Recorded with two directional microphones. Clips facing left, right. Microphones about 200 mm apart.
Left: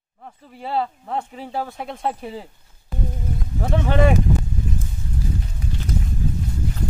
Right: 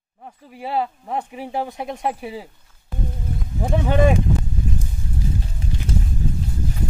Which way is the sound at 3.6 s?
15° right (ahead or behind).